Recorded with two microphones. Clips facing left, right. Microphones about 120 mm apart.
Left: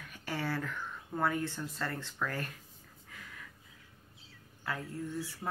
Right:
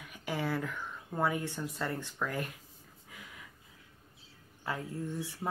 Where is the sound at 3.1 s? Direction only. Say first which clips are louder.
Even; 15° right (ahead or behind).